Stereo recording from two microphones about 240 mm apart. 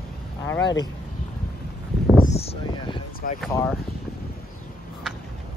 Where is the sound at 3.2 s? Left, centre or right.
Left.